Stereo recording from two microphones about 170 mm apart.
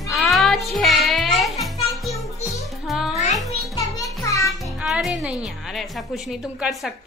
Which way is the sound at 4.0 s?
20° left (ahead or behind).